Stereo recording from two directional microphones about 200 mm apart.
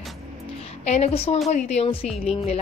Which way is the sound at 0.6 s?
30° left (ahead or behind).